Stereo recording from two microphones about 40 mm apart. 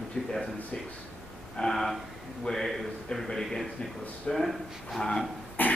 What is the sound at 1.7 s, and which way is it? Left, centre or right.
Speech, centre.